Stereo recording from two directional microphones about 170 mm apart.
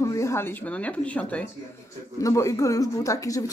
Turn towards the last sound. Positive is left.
turn(degrees=20)  # may be behind; listen again after turning